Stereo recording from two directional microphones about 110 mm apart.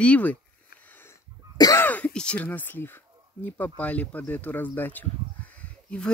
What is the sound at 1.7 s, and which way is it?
Speech, 15° left (ahead or behind).